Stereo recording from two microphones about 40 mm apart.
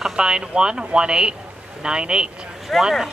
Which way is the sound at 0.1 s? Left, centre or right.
Right.